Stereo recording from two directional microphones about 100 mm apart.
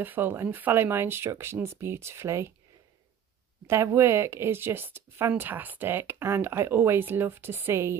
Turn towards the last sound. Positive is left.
turn(degrees=-25)  # may be behind; listen again after turning